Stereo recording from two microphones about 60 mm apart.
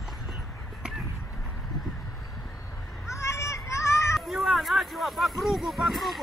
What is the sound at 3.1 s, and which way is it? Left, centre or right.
Children playing, left.